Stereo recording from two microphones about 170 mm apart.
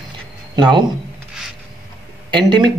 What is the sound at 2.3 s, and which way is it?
Speech, 25° right (ahead or behind).